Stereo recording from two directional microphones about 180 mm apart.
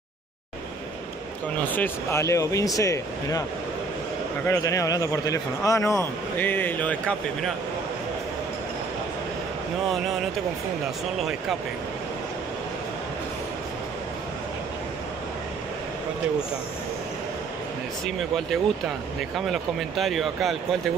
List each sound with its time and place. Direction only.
1.6 s speech: 10° left (ahead or behind)
4.5 s speech: 15° left (ahead or behind)
18.0 s speech: centre (ahead or behind)